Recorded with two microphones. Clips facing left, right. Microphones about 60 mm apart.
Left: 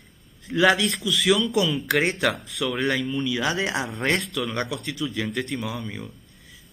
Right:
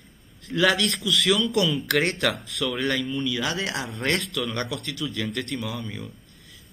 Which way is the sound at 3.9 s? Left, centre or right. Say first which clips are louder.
Left 2 dB; centre.